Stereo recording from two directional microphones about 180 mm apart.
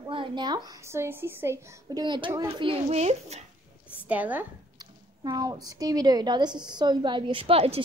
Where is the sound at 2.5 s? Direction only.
30° right (ahead or behind).